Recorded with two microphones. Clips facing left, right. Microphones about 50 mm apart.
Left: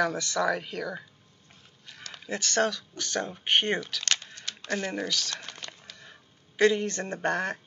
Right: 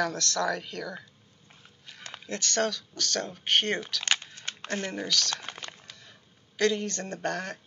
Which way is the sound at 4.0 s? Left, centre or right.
Centre.